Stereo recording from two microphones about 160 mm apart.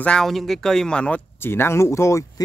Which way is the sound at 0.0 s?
5° left (ahead or behind).